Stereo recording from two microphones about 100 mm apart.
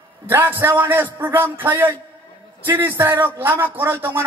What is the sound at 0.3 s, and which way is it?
A man's voice, 20° right (ahead or behind).